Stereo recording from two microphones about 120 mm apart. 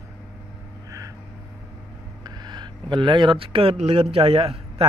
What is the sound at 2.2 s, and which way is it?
Speech, 40° right (ahead or behind).